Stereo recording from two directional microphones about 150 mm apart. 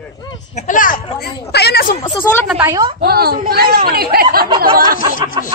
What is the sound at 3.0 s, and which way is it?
Speech, 90° right.